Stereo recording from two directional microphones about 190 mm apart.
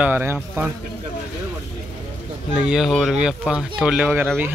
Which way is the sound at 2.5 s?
5° right (ahead or behind).